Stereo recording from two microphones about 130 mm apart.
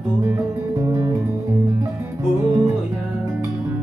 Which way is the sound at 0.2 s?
20° right (ahead or behind).